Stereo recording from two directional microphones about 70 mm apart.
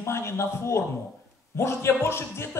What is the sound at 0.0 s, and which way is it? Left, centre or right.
A man's voice, left.